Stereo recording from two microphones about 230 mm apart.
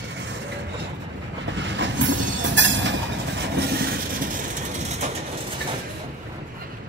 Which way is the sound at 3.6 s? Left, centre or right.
Right.